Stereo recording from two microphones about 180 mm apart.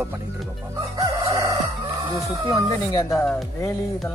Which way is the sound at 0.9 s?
25° right (ahead or behind).